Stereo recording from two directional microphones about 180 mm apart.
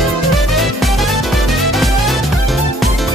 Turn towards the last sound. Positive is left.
turn(degrees=0)  # may be behind; listen again after turning